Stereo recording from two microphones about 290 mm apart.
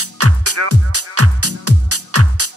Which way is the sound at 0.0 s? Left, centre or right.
Right.